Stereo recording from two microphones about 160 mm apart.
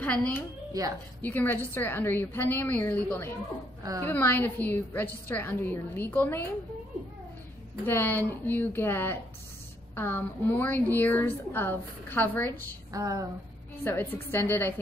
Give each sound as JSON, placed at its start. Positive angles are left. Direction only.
{"t": 0.0, "sound": "a woman's voice", "side_deg": 10}
{"t": 7.8, "sound": "a woman's voice", "side_deg": 15}
{"t": 12.9, "sound": "a woman's voice", "side_deg": -20}
{"t": 13.8, "sound": "a woman's voice", "side_deg": 10}